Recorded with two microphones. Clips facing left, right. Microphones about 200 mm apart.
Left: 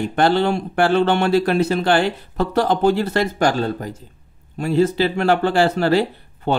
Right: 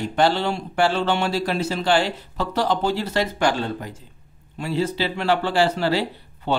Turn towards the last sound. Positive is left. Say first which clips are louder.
# left 4 dB
turn(degrees=50)  # may be behind; listen again after turning